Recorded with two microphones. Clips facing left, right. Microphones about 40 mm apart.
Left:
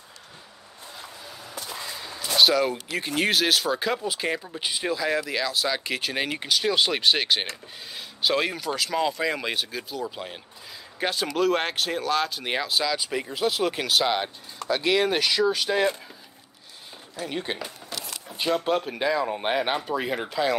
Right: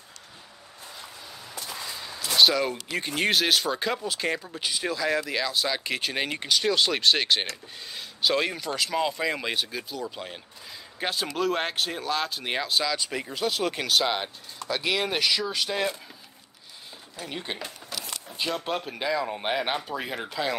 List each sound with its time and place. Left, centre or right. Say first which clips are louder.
2.0 s a sound: even; centre
3.2 s speech: left 1 dB; centre
4.6 s speech: left 1 dB; centre
4.8 s speech: left 1 dB; centre
17.3 s speech: left 3 dB; centre